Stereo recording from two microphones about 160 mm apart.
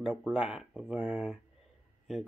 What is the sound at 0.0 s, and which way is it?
Speech, 5° right (ahead or behind).